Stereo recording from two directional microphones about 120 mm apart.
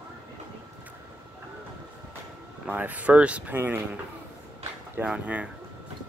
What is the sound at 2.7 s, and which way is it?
Speech, 15° right (ahead or behind).